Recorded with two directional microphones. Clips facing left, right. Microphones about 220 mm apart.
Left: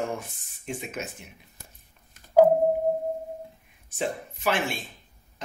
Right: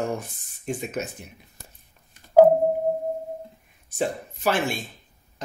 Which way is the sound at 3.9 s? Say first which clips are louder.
Right 3 dB; 40° right (ahead or behind).